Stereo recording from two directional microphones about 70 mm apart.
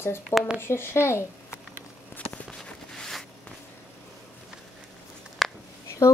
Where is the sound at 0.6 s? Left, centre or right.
Left.